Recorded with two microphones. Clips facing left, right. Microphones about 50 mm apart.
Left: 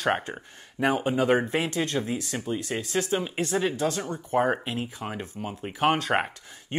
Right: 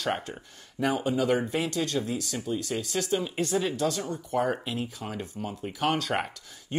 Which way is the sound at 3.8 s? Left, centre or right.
Left.